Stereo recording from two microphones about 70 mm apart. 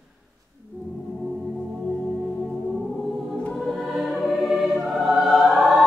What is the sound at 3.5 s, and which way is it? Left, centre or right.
Choir, centre.